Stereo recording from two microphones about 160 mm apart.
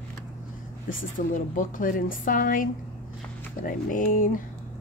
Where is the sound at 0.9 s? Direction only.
55° left (ahead or behind).